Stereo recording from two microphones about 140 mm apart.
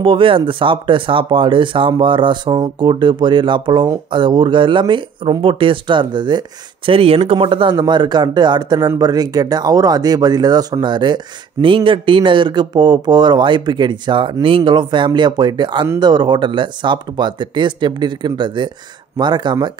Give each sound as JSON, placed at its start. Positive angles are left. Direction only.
{"t": 0.0, "sound": "speech", "side_deg": -40}